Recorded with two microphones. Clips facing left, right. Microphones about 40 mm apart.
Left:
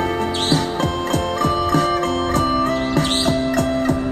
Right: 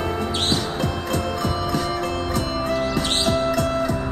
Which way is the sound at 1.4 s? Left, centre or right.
Left.